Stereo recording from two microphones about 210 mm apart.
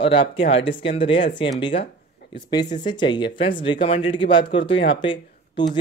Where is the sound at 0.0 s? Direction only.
25° left (ahead or behind).